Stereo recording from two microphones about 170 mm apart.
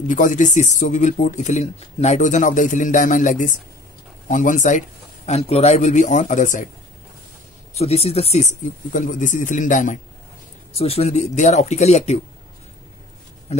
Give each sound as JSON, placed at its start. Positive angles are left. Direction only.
{"t": 0.1, "sound": "speech", "side_deg": 50}
{"t": 7.7, "sound": "speech", "side_deg": 35}
{"t": 10.8, "sound": "speech", "side_deg": 35}